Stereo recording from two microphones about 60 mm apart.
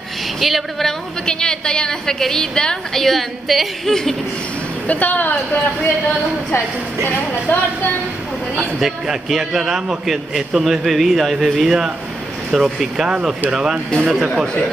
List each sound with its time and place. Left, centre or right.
0.4 s a woman's voice: centre
4.8 s a woman's voice: left
7.1 s a woman's voice: left
8.5 s a man's voice: centre